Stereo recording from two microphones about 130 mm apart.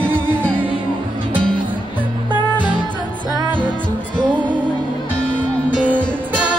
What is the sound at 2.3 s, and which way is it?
Music, 35° left (ahead or behind).